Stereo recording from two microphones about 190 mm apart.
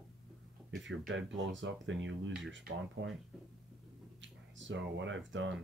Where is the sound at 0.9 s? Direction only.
80° right.